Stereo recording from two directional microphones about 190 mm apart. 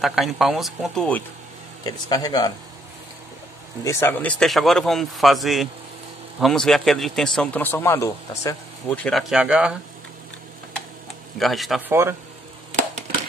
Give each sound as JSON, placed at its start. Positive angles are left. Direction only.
{"t": 0.0, "sound": "a man's voice", "side_deg": 0}
{"t": 1.9, "sound": "speech", "side_deg": 20}
{"t": 3.8, "sound": "a man's voice", "side_deg": 15}
{"t": 8.9, "sound": "a man's voice", "side_deg": 5}
{"t": 11.3, "sound": "a man's voice", "side_deg": 0}
{"t": 11.9, "sound": "speech", "side_deg": -15}